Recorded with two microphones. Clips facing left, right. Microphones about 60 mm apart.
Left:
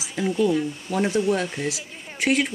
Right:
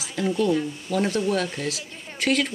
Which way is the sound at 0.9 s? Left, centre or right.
Centre.